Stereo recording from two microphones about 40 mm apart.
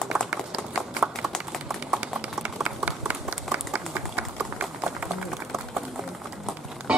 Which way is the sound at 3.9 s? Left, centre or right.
Right.